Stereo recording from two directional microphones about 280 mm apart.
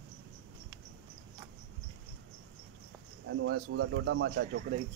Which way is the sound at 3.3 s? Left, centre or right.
Right.